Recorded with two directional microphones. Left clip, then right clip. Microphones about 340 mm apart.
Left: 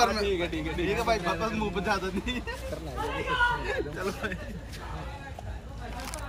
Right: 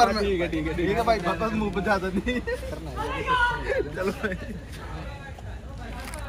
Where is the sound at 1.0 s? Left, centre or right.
Centre.